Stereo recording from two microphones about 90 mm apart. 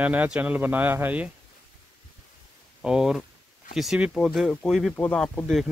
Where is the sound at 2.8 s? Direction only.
5° right (ahead or behind).